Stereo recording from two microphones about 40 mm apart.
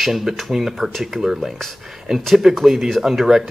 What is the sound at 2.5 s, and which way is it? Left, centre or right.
Speech, centre.